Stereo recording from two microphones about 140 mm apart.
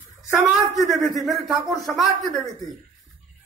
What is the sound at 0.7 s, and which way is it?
Speech, centre (ahead or behind).